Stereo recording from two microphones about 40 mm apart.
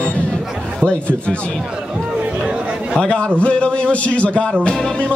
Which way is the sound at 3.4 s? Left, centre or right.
Left.